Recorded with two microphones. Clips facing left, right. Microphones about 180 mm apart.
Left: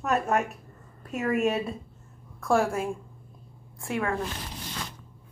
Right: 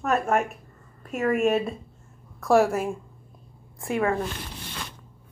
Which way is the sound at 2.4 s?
5° right (ahead or behind).